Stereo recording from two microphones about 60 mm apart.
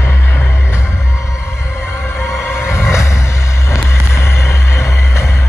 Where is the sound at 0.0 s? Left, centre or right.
Left.